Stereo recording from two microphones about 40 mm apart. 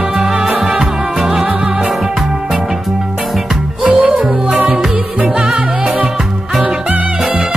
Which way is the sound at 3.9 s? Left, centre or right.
Right.